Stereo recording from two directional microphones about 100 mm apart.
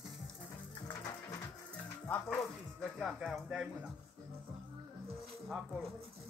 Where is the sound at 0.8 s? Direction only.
40° left (ahead or behind).